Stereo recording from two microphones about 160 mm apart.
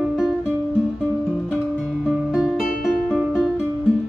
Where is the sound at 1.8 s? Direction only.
5° right (ahead or behind).